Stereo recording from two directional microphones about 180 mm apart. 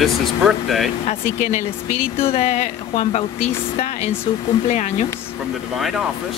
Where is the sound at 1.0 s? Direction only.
45° left (ahead or behind).